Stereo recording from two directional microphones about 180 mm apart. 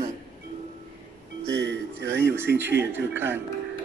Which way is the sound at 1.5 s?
85° right.